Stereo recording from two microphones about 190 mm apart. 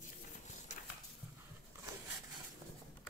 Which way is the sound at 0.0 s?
40° left (ahead or behind).